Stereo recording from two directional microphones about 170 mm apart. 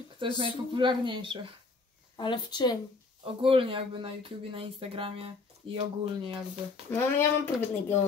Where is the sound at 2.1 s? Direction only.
25° left (ahead or behind).